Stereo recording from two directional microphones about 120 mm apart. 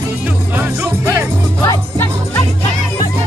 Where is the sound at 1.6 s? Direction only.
25° left (ahead or behind).